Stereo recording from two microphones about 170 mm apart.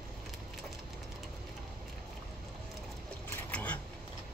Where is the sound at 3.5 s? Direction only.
10° left (ahead or behind).